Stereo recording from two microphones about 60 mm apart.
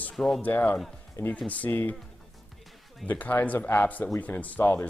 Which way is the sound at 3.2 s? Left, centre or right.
Left.